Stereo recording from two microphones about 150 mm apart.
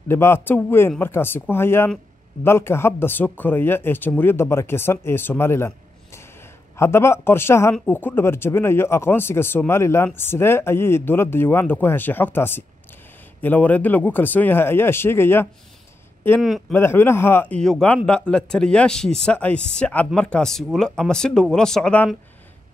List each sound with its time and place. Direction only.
0.1 s speech: 15° left (ahead or behind)
16.3 s speech: centre (ahead or behind)
16.7 s speech: 15° left (ahead or behind)